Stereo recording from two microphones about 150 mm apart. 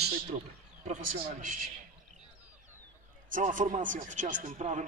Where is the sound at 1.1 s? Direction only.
65° right (ahead or behind).